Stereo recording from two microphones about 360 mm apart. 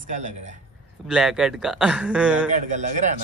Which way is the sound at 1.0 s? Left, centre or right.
Centre.